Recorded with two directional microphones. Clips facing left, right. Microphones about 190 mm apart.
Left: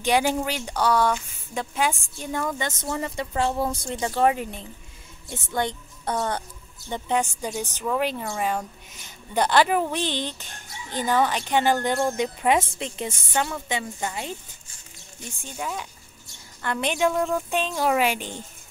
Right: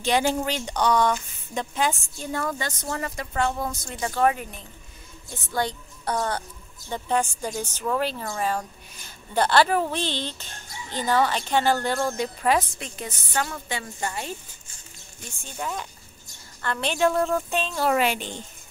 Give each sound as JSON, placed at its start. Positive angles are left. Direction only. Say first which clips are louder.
{"t": 0.0, "sound": "speech", "louder": "left 1 dB", "side_deg": 10}
{"t": 2.8, "sound": "speech", "louder": "left 2 dB", "side_deg": 25}
{"t": 15.4, "sound": "speech", "louder": "even", "side_deg": 5}